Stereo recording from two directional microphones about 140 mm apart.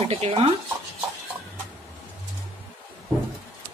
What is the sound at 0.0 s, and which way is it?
Speech, 45° right (ahead or behind).